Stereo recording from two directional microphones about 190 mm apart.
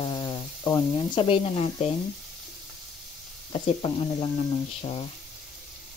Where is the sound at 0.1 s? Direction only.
20° left (ahead or behind).